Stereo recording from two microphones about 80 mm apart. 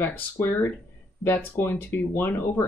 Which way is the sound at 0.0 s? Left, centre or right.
Left.